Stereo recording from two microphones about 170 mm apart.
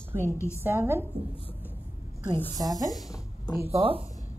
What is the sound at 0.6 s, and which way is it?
Speech, 15° right (ahead or behind).